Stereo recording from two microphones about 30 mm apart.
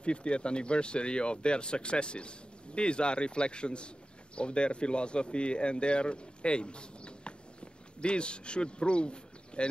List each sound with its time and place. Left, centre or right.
0.0 s speech: left